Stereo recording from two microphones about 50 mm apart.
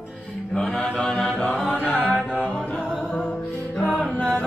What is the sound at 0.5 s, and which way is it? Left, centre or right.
Chant, centre.